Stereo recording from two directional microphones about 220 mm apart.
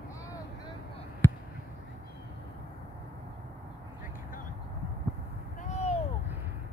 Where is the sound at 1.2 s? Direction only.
10° left (ahead or behind).